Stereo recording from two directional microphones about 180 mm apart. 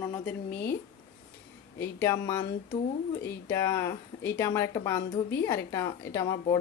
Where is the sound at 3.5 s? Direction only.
15° left (ahead or behind).